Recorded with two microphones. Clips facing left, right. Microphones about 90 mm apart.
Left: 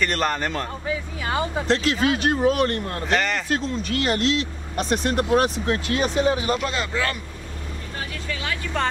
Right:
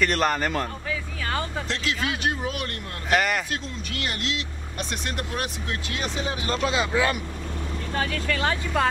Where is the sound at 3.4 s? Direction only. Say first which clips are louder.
Left 8 dB; 35° left (ahead or behind).